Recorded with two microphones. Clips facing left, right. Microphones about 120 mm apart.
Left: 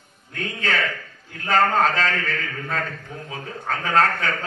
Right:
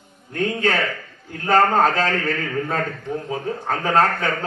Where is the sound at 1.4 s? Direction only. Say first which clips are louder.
Right 3 dB; 50° right (ahead or behind).